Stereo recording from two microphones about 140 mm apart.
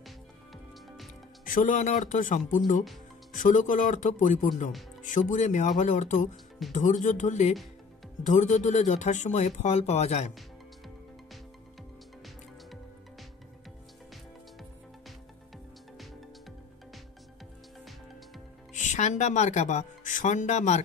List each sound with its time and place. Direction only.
1.4 s speech: 70° left (ahead or behind); by 10.3 s 50° left (ahead or behind)
18.7 s speech: 60° left (ahead or behind)